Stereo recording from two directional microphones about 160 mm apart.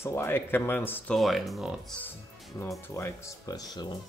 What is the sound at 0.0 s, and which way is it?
Speech, 15° left (ahead or behind).